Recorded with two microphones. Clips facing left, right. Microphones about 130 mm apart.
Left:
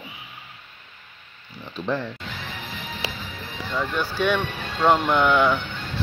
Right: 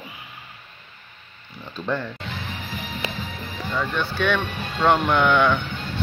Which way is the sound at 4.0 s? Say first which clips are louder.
Left 1 dB; 10° left (ahead or behind).